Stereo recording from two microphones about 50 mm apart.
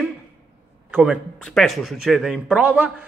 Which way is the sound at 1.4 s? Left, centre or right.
Centre.